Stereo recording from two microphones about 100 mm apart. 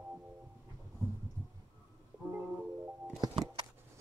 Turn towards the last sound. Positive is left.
turn(degrees=-45)  # may be behind; listen again after turning